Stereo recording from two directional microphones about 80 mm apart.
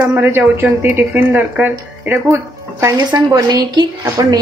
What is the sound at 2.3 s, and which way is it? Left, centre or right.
Speech, right.